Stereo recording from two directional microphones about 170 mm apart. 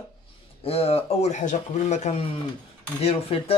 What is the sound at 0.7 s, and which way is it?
Speech, 35° left (ahead or behind).